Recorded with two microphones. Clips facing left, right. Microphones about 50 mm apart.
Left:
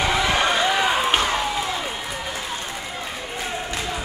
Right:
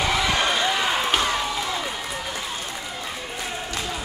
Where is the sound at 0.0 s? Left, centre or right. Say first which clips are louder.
Left 2 dB; centre.